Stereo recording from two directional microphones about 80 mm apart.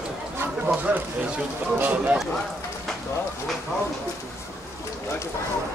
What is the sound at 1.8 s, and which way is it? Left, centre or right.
Speech, right.